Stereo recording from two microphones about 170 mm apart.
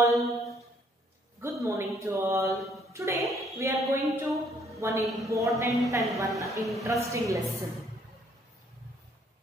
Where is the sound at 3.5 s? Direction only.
15° right (ahead or behind).